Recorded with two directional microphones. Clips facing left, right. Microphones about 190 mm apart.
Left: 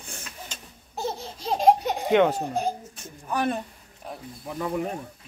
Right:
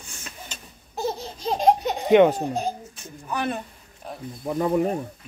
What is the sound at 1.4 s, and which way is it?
Laughter, 5° left (ahead or behind).